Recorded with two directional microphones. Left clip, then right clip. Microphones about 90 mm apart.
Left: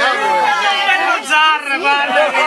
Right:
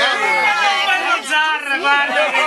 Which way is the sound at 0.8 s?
15° left (ahead or behind).